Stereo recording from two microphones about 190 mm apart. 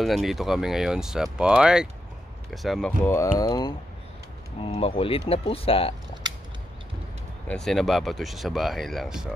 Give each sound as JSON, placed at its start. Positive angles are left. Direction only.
{"t": 0.0, "sound": "speech", "side_deg": 0}
{"t": 3.1, "sound": "speech", "side_deg": 15}
{"t": 7.4, "sound": "speech", "side_deg": 5}